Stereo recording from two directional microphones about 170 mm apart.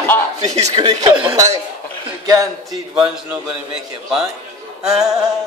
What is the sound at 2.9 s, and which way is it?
Speech, 5° right (ahead or behind).